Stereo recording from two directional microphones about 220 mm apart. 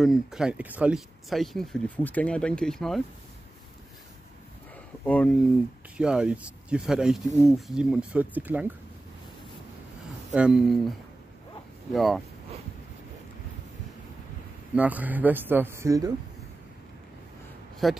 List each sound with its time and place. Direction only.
0.0 s speech: centre (ahead or behind)
5.0 s speech: 5° left (ahead or behind)
10.3 s speech: 5° right (ahead or behind)
11.9 s speech: centre (ahead or behind)
14.8 s speech: 5° right (ahead or behind)
17.8 s speech: centre (ahead or behind)